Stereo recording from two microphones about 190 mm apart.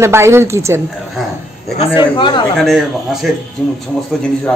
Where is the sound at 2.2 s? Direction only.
25° left (ahead or behind).